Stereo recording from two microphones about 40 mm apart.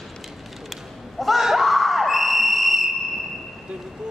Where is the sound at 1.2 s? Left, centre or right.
Centre.